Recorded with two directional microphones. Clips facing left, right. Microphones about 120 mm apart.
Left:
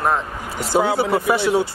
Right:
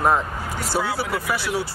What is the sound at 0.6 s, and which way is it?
Speech, 20° left (ahead or behind).